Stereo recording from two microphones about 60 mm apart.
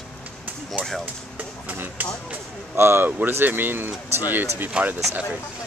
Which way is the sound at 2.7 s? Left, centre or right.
Right.